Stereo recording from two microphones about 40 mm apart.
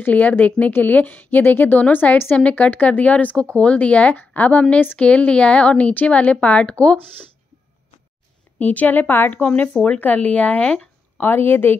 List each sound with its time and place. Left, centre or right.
0.0 s a woman's voice: left
1.4 s a woman's voice: left
1.8 s a woman's voice: left
2.7 s a woman's voice: left
4.1 s a woman's voice: left
8.5 s a woman's voice: left
9.3 s a woman's voice: left
11.1 s a woman's voice: left